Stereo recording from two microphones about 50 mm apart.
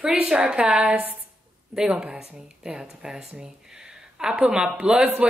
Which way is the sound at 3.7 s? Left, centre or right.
Centre.